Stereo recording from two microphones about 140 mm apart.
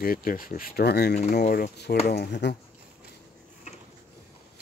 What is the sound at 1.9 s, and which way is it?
Speech, 90° left.